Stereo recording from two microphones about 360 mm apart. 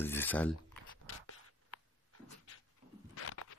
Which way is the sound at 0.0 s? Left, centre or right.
Centre.